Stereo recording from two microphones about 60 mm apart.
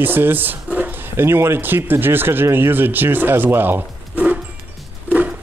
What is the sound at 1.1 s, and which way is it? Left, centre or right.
A man's voice, right.